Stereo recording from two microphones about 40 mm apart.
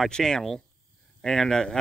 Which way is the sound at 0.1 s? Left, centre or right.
Centre.